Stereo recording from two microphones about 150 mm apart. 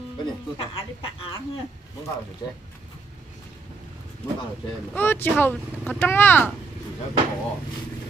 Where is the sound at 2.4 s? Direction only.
25° left (ahead or behind).